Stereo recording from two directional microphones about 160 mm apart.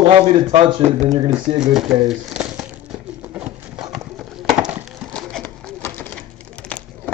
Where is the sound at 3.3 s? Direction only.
5° right (ahead or behind).